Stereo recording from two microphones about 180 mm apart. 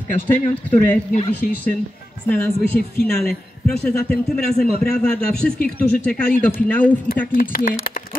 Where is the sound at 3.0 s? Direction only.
5° left (ahead or behind).